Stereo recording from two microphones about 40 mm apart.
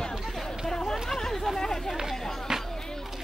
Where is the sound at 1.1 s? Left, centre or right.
Centre.